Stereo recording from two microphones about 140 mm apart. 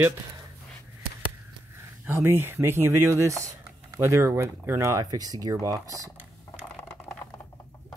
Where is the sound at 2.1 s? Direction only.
15° right (ahead or behind).